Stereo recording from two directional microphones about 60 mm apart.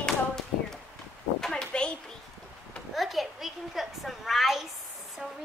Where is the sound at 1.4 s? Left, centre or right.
Centre.